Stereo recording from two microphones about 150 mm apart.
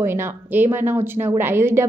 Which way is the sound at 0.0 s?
15° right (ahead or behind).